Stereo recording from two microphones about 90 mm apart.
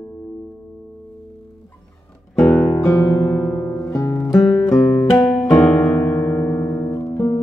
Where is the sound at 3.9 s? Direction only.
35° left (ahead or behind).